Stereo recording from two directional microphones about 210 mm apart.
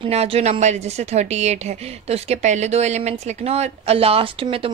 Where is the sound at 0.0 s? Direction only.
30° right (ahead or behind).